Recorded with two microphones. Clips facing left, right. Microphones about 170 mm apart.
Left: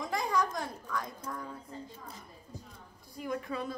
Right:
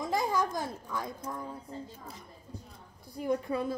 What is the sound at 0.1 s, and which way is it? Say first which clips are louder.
A child's voice: right 2 dB; 25° right (ahead or behind).